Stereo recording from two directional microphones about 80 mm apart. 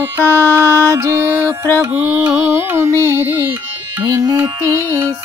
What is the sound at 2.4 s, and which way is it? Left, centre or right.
Music, right.